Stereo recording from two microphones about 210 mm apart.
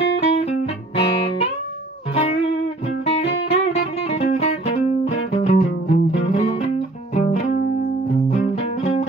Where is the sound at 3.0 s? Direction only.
30° left (ahead or behind).